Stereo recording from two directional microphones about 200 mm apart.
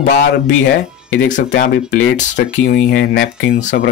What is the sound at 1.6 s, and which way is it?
Speech, 45° left (ahead or behind).